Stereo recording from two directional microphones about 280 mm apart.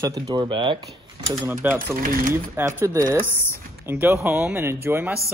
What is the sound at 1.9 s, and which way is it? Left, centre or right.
Speech, right.